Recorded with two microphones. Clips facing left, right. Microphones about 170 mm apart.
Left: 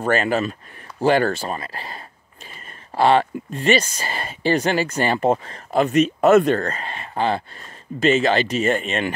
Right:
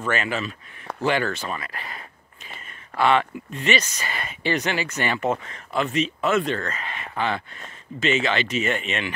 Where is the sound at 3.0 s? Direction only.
35° left (ahead or behind).